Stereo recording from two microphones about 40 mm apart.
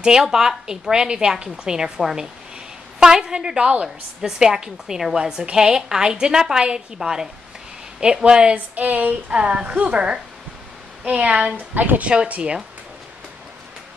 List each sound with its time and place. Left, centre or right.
0.0 s a woman's voice: centre
3.0 s a woman's voice: centre
8.5 s a sound: right
9.3 s a woman's voice: right
11.7 s a sound: right
12.1 s a woman's voice: right